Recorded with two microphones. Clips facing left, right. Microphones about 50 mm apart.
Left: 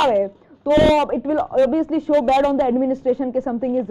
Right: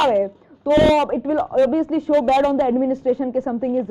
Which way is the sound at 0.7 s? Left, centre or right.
Centre.